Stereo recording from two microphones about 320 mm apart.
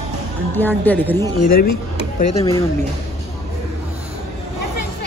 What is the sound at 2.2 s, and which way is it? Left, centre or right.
Speech, centre.